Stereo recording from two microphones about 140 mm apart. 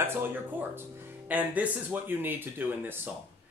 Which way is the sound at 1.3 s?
10° right (ahead or behind).